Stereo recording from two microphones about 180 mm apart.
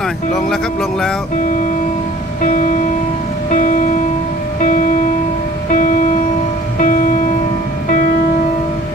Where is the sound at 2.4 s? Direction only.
45° left (ahead or behind).